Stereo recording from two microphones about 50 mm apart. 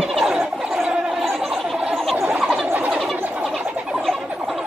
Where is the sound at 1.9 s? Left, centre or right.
Centre.